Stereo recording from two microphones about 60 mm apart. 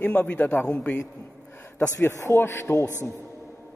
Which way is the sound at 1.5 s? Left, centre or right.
Left.